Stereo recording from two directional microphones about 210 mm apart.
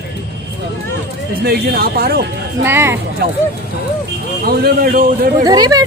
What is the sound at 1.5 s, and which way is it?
Speech, 45° right (ahead or behind).